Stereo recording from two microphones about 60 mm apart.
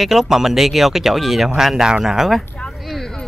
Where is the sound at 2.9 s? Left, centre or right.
Centre.